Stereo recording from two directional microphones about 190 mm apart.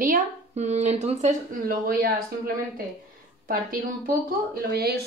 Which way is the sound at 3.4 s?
50° right (ahead or behind).